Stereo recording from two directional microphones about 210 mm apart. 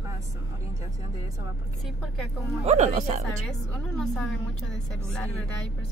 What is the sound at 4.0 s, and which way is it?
Speech, 5° left (ahead or behind).